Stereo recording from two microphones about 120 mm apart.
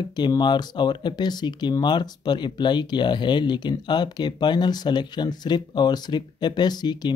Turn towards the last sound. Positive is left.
turn(degrees=35)  # may be behind; listen again after turning